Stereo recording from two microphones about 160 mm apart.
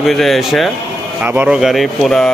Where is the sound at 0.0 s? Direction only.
Centre (ahead or behind).